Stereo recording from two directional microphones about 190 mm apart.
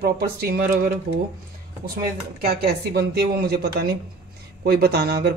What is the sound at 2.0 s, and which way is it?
A woman's voice, 55° right (ahead or behind).